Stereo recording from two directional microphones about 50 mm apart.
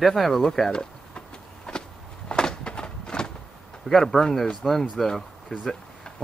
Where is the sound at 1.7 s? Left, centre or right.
Centre.